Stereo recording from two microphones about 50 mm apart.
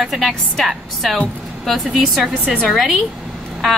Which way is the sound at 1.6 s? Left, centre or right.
Centre.